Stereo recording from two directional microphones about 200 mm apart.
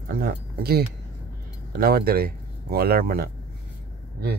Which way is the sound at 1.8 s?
50° right (ahead or behind).